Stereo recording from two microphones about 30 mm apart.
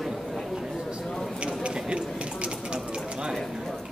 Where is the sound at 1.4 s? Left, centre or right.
Right.